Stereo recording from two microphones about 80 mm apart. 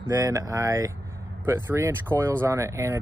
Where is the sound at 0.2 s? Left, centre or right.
Right.